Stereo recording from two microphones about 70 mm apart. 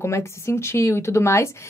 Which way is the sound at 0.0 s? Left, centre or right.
Left.